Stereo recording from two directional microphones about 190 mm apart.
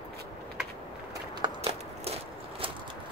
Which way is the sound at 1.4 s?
35° right (ahead or behind).